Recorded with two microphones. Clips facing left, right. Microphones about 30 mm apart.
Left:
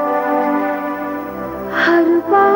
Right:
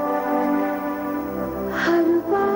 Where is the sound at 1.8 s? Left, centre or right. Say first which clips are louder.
Left 6 dB; left.